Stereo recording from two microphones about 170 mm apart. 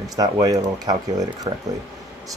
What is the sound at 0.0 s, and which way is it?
Speech, 20° right (ahead or behind).